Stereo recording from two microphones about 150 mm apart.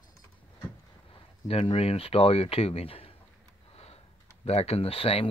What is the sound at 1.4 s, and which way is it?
Speech, 40° left (ahead or behind).